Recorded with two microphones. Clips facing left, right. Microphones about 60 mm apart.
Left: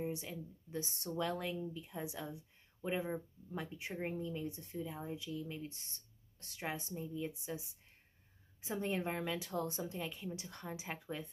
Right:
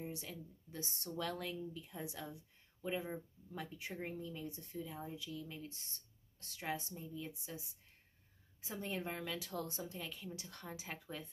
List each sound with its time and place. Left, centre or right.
0.0 s a woman's voice: left
8.8 s speech: left